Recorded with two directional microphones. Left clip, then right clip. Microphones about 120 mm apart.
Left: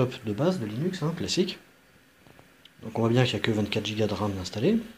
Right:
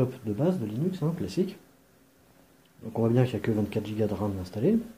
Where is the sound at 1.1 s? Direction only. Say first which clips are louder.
Left 3 dB; 5° left (ahead or behind).